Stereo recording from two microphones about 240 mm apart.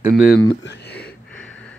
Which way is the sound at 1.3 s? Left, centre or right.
Centre.